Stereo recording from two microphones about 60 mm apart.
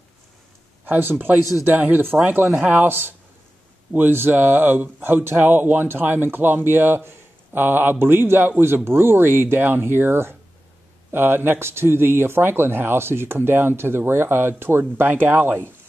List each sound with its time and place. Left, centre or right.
0.8 s speech: right